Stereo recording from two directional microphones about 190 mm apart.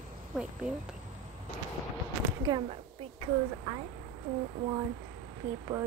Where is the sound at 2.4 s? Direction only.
25° right (ahead or behind).